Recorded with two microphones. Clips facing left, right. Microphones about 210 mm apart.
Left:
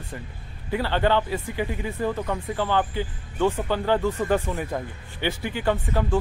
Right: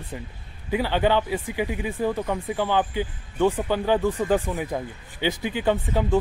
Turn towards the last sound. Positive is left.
turn(degrees=-15)  # may be behind; listen again after turning